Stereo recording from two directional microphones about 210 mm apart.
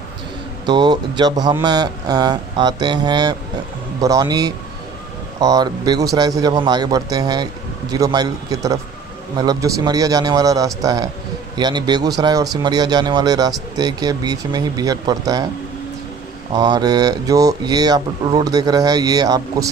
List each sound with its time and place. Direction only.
0.7 s speech: 20° right (ahead or behind)
16.5 s speech: 20° right (ahead or behind)